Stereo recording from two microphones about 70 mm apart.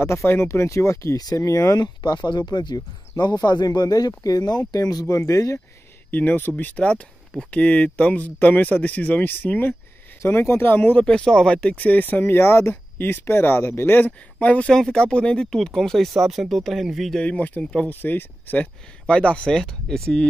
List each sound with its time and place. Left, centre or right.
0.0 s speech: left
1.1 s speech: left
1.8 s speech: left
5.0 s speech: left
6.0 s speech: left
11.1 s speech: centre
14.7 s speech: centre
17.2 s speech: centre